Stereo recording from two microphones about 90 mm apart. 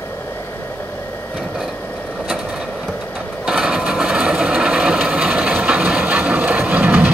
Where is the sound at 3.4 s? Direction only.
5° right (ahead or behind).